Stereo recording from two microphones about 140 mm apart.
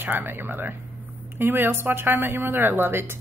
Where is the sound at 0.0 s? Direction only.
15° right (ahead or behind).